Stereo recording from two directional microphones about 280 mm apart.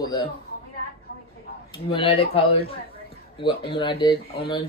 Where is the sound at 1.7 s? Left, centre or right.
Centre.